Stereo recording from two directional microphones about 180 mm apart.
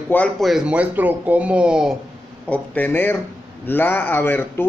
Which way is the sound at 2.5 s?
10° left (ahead or behind).